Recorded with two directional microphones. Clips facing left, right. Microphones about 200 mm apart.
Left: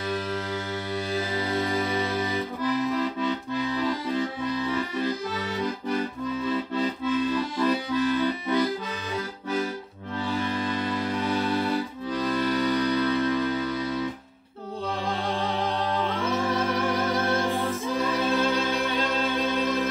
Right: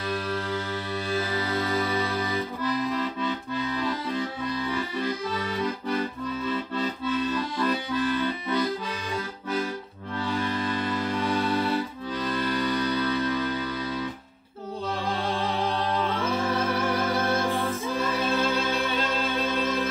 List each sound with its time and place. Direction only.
0.1 s music: 20° left (ahead or behind)
6.7 s accordion: 15° left (ahead or behind)
10.4 s music: 15° left (ahead or behind)
17.1 s music: 15° left (ahead or behind)